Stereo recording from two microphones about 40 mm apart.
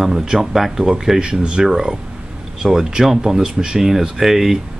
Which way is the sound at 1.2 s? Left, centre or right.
Right.